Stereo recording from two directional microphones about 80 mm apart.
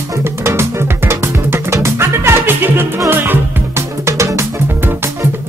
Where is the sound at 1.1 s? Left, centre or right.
Right.